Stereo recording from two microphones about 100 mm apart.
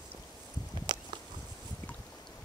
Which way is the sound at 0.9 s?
45° right (ahead or behind).